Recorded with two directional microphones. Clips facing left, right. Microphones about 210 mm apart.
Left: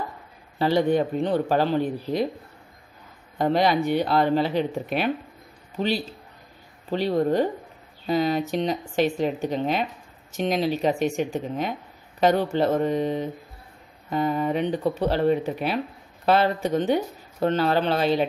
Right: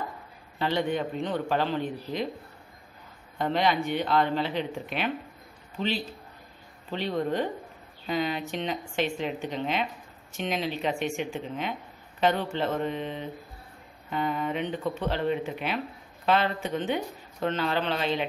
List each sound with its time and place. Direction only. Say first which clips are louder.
0.6 s speech: left 7 dB; 40° left (ahead or behind)
3.3 s speech: left 5 dB; 40° left (ahead or behind)
6.9 s speech: left 6 dB; 40° left (ahead or behind)